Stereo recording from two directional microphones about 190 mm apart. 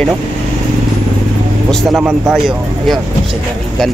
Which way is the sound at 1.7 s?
5° left (ahead or behind).